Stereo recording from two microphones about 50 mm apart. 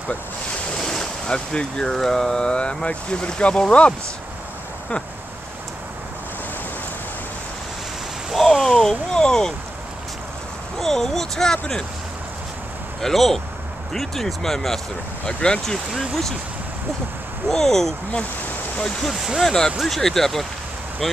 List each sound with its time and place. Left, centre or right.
0.7 s speech: centre
8.4 s a sound: centre
8.7 s speech: centre
10.8 s speech: centre
13.0 s speech: centre
15.2 s speech: centre
15.6 s speech: centre
17.5 s speech: centre
19.0 s speech: centre